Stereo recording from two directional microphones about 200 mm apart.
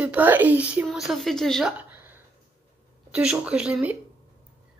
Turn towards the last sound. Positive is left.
turn(degrees=-5)  # may be behind; listen again after turning